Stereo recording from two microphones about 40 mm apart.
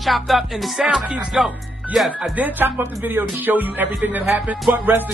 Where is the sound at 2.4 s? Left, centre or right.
Right.